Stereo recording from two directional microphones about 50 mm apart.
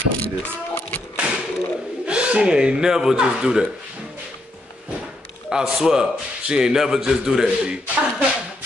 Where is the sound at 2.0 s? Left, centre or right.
Right.